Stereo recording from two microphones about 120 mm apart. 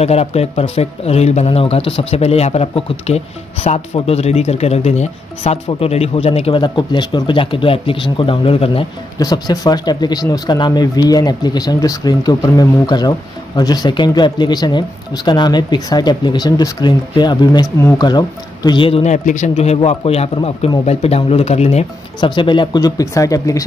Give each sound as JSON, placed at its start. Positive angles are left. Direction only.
{"t": 0.0, "sound": "speech", "side_deg": 60}
{"t": 5.4, "sound": "speech", "side_deg": 50}
{"t": 6.6, "sound": "speech", "side_deg": 40}
{"t": 9.2, "sound": "speech", "side_deg": 30}
{"t": 19.0, "sound": "speech", "side_deg": 85}
{"t": 22.2, "sound": "speech", "side_deg": 40}